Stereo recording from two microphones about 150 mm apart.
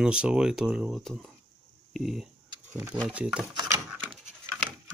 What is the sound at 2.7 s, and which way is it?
Speech, 20° right (ahead or behind).